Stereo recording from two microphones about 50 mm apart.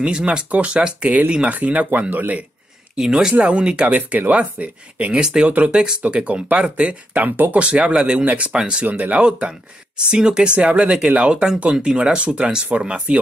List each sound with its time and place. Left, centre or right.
0.0 s speech: centre; by 2.4 s right
3.0 s speech: centre
7.2 s speech: right
7.5 s speech: right
8.8 s speech: right